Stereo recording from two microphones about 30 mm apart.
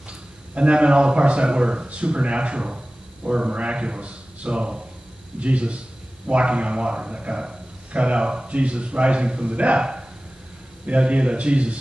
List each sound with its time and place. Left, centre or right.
0.6 s a man's voice: right
9.8 s a sound: right
10.9 s a man's voice: right